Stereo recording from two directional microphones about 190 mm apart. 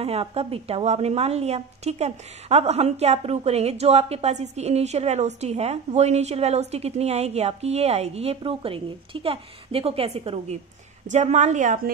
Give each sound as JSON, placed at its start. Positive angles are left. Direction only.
{"t": 0.0, "sound": "a woman's voice", "side_deg": -30}